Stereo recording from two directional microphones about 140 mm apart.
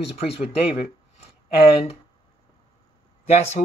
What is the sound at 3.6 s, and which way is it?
Speech, 80° left.